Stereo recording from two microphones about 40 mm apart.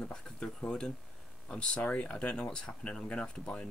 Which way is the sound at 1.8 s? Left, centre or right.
Left.